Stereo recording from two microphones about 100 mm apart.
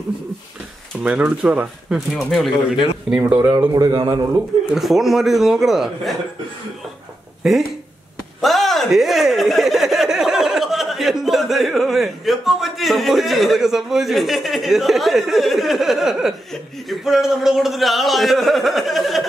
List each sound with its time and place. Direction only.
1.0 s speech: 10° right (ahead or behind)
2.0 s speech: centre (ahead or behind)
3.1 s speech: 10° right (ahead or behind)
3.7 s a man's voice: 45° right (ahead or behind)
4.1 s a man's voice: 30° right (ahead or behind)
4.7 s speech: 5° right (ahead or behind)
7.4 s speech: 5° right (ahead or behind)